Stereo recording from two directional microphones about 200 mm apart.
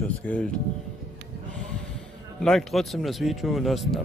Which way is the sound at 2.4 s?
Centre (ahead or behind).